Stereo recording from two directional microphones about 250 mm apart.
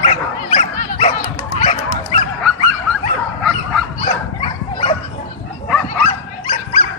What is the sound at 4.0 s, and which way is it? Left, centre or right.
Dog, left.